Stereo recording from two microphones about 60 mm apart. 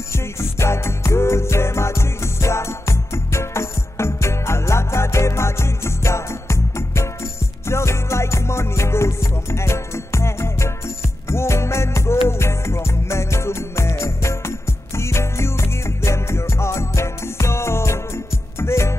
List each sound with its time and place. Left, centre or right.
0.1 s music: left